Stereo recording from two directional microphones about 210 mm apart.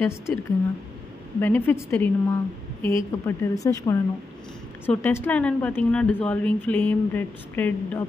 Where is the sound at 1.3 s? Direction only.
10° left (ahead or behind).